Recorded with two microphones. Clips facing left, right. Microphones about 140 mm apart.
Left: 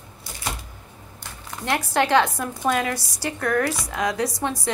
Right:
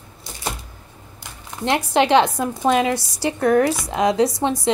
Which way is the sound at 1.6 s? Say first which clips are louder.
Right 4 dB; 20° right (ahead or behind).